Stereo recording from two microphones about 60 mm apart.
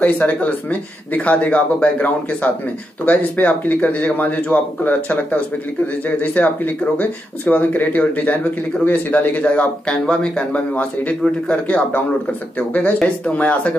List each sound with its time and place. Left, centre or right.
0.0 s speech: left